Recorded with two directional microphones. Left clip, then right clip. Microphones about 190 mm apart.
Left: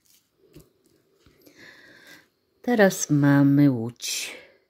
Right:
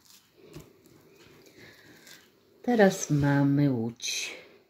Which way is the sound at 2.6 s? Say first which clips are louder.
Left 3 dB; 40° left (ahead or behind).